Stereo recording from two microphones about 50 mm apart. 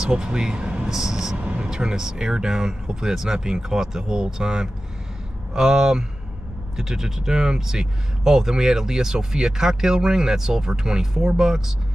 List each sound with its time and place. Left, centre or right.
0.0 s speech: centre
1.4 s vehicle: right
1.7 s speech: centre